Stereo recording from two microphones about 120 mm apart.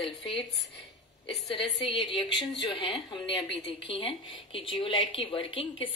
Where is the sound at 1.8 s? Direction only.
45° left (ahead or behind).